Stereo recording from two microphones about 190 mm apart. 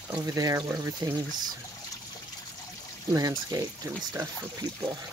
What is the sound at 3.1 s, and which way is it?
Speech, 20° right (ahead or behind).